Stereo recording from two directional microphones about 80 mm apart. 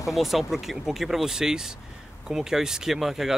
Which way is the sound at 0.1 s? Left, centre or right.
Centre.